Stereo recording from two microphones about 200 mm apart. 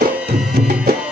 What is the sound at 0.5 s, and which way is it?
Music, 50° right (ahead or behind).